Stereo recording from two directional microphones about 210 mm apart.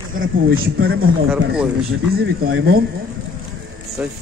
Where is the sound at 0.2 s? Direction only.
70° right (ahead or behind).